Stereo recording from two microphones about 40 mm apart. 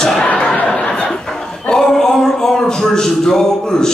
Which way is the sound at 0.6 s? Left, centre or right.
Left.